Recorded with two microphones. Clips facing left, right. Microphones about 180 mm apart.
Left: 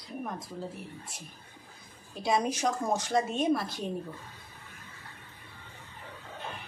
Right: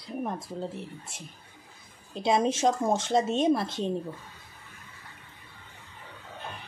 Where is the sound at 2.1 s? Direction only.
25° right (ahead or behind).